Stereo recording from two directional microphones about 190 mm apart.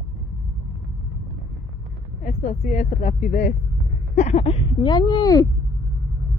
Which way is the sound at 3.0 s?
45° left (ahead or behind).